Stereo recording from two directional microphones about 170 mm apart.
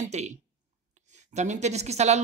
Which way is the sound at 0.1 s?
40° right (ahead or behind).